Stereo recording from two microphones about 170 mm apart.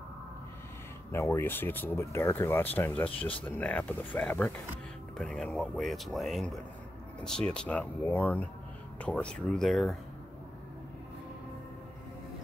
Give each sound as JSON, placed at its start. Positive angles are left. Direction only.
{"t": 1.1, "sound": "speech", "side_deg": 15}
{"t": 3.2, "sound": "speech", "side_deg": 30}
{"t": 3.4, "sound": "speech", "side_deg": 10}